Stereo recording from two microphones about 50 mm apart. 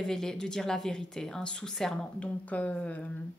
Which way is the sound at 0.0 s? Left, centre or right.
Centre.